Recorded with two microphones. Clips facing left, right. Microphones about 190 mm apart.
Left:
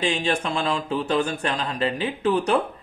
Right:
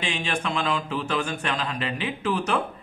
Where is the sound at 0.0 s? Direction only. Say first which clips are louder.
Left 5 dB; 35° left (ahead or behind).